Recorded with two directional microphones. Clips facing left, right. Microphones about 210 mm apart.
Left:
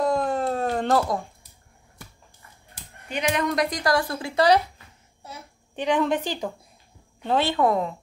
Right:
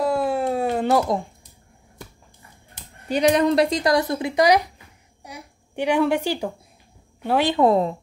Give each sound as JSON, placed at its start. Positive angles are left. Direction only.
{"t": 0.0, "sound": "a sound", "side_deg": -5}
{"t": 3.1, "sound": "speech", "side_deg": -35}
{"t": 5.2, "sound": "babbling", "side_deg": -15}
{"t": 7.2, "sound": "speech", "side_deg": -15}